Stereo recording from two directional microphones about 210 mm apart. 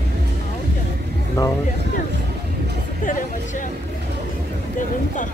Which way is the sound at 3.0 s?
40° left (ahead or behind).